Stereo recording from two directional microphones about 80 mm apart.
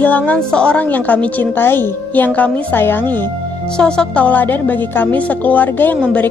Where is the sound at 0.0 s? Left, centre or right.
Centre.